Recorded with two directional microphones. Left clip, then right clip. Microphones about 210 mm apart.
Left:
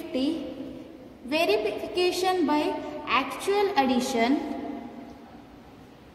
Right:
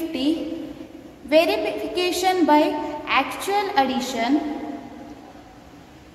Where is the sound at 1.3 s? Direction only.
20° left (ahead or behind).